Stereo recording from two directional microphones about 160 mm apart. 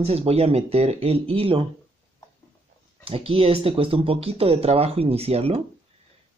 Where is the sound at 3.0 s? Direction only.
35° right (ahead or behind).